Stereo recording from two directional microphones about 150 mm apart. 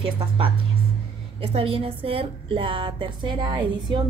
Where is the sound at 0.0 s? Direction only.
35° right (ahead or behind).